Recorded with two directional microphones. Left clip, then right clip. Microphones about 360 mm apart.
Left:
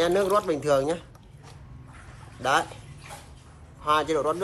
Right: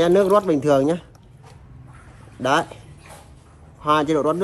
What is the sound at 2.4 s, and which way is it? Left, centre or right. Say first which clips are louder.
Speech: right 4 dB; centre.